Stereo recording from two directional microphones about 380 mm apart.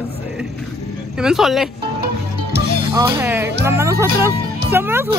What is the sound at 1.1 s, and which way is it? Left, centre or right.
Speech, centre.